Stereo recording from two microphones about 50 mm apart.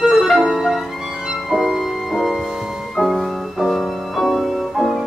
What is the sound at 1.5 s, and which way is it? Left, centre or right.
Music, centre.